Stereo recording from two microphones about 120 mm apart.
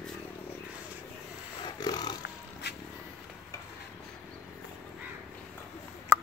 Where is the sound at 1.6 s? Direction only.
35° left (ahead or behind).